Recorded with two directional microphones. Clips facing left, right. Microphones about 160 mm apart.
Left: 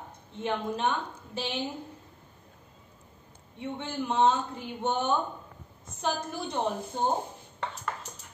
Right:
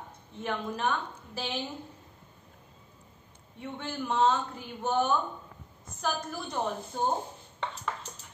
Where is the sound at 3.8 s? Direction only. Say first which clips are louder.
Left 1 dB; 20° left (ahead or behind).